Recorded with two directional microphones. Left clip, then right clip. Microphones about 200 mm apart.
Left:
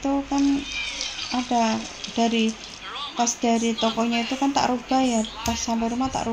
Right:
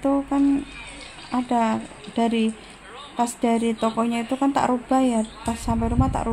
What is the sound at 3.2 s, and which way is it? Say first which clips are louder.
Speech: even; 40° right (ahead or behind).